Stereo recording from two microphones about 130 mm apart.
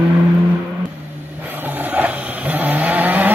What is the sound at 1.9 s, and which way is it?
Vehicle, 10° right (ahead or behind).